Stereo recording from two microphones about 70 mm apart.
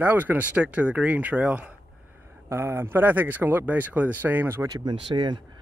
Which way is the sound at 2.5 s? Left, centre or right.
Right.